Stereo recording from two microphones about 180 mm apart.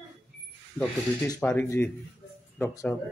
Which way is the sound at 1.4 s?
10° left (ahead or behind).